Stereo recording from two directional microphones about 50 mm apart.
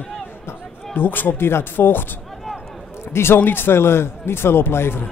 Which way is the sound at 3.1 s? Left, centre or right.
Left.